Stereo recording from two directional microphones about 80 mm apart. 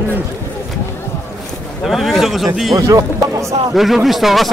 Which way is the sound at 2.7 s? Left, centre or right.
Right.